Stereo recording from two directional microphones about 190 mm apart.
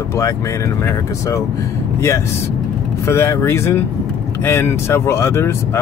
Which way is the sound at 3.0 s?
15° left (ahead or behind).